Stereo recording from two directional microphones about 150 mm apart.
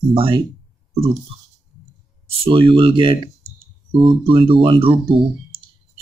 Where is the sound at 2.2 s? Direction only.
35° right (ahead or behind).